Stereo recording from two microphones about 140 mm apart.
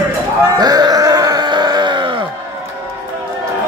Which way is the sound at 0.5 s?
30° right (ahead or behind).